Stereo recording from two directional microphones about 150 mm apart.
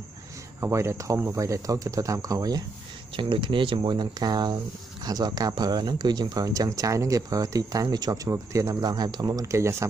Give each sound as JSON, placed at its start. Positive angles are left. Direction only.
{"t": 0.6, "sound": "speech", "side_deg": -20}
{"t": 3.2, "sound": "speech", "side_deg": -35}